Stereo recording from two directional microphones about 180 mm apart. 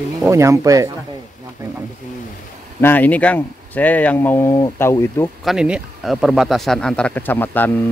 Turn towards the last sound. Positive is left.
turn(degrees=10)  # may be behind; listen again after turning